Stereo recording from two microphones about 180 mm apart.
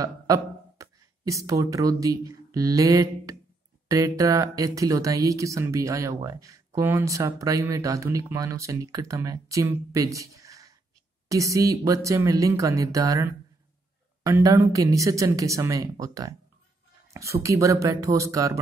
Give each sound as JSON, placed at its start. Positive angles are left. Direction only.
{"t": 0.0, "sound": "speech", "side_deg": -20}